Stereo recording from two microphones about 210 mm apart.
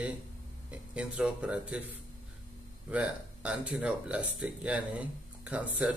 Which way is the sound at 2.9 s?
5° right (ahead or behind).